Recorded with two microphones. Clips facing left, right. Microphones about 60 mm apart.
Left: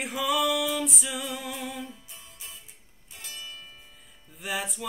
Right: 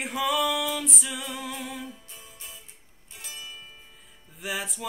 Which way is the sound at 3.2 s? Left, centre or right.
Centre.